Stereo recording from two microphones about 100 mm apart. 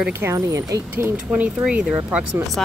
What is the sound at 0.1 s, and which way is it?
Speech, 20° right (ahead or behind).